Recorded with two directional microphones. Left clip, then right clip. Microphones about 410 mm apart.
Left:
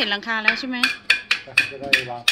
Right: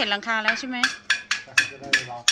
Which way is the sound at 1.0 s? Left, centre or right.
Left.